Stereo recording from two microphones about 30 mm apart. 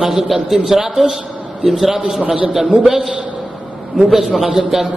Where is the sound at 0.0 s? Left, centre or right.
Centre.